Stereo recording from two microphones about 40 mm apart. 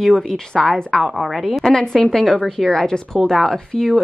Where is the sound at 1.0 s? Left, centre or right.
Centre.